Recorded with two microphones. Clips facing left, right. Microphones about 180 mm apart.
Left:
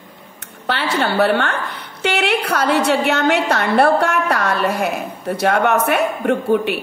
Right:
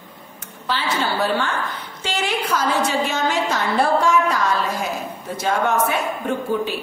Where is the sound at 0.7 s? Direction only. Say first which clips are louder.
Left 3 dB; 65° left (ahead or behind).